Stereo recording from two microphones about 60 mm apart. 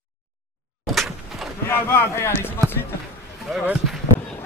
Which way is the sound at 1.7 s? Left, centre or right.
Left.